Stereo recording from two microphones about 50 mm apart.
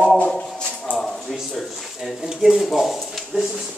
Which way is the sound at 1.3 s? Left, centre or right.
Centre.